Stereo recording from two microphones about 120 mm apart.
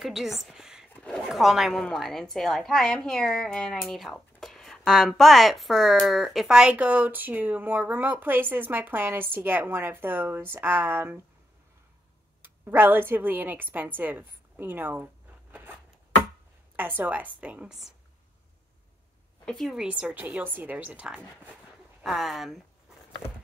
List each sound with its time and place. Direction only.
0.0 s a woman's voice: centre (ahead or behind)
0.9 s speech: 10° left (ahead or behind)
1.3 s a woman's voice: 5° right (ahead or behind)
12.4 s a woman's voice: 20° right (ahead or behind)
15.5 s a sound: 15° right (ahead or behind)
16.7 s a woman's voice: 15° right (ahead or behind)
19.4 s a woman's voice: centre (ahead or behind)